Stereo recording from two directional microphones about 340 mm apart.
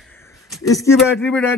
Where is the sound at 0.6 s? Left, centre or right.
Centre.